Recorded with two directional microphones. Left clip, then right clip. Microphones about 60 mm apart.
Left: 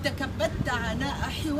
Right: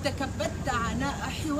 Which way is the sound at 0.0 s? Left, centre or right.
Right.